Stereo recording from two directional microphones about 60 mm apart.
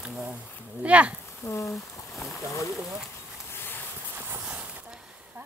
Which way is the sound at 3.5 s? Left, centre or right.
Left.